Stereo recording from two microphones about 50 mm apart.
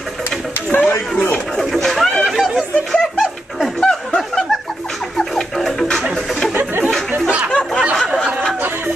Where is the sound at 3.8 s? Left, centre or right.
Centre.